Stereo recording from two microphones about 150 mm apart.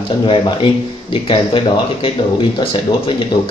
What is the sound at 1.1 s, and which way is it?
A man's voice, 35° left (ahead or behind).